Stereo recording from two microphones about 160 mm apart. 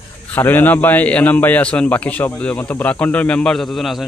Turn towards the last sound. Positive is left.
turn(degrees=0)  # may be behind; listen again after turning